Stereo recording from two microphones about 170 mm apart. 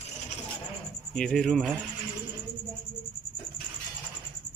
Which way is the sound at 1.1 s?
5° left (ahead or behind).